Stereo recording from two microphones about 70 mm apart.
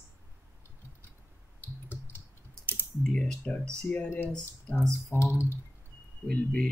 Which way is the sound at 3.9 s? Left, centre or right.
Left.